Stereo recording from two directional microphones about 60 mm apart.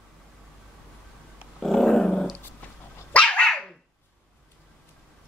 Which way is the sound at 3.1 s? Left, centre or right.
Left.